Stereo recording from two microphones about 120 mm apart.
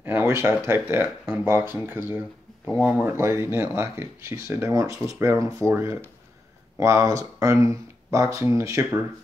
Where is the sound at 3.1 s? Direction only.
20° right (ahead or behind).